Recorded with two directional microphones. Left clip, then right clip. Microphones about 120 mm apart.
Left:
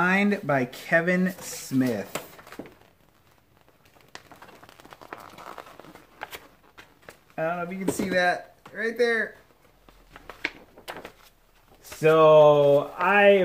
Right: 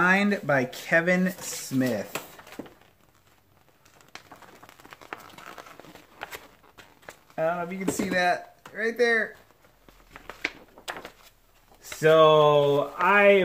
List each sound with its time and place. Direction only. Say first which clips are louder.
0.0 s speech: right 1 dB; 15° right (ahead or behind)
5.2 s a sound: left 2 dB; 15° left (ahead or behind)
7.1 s speech: right 2 dB; 5° right (ahead or behind)
12.0 s speech: left 2 dB; 10° right (ahead or behind)
13.1 s speech: left 1 dB; 20° right (ahead or behind)